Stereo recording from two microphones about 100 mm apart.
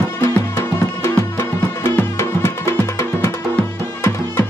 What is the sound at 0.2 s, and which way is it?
Music, 25° left (ahead or behind).